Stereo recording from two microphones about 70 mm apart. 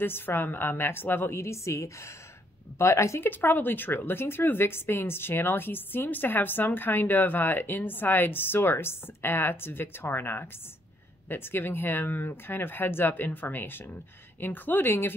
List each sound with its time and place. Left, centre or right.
0.0 s speech: left
3.3 s speech: left